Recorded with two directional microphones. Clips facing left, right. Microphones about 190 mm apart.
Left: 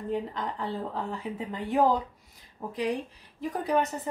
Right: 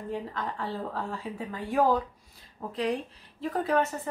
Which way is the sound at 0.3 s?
20° left (ahead or behind).